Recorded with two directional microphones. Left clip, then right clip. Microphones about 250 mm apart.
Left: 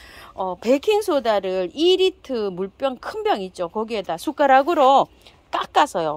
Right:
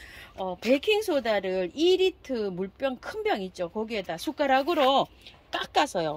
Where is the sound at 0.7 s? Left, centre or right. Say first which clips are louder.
Left 5 dB; centre.